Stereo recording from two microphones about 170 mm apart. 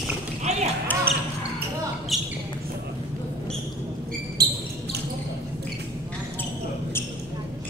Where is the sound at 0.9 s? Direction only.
10° left (ahead or behind).